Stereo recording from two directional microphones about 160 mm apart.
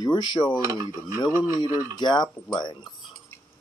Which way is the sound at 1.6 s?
25° left (ahead or behind).